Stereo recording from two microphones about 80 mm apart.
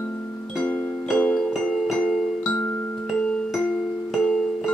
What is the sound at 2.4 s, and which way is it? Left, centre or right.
Music, centre.